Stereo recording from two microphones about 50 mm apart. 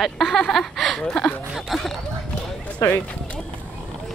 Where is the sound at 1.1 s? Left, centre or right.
Centre.